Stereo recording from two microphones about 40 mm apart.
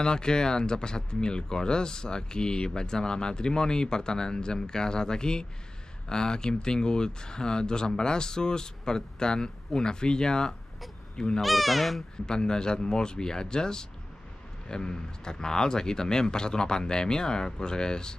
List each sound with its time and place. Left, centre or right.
0.0 s speech: centre
11.4 s speech: centre
12.3 s speech: centre